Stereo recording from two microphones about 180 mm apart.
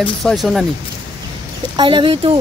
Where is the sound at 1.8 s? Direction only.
25° right (ahead or behind).